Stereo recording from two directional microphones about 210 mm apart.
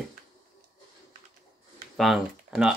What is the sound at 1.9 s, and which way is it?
Speech, centre (ahead or behind).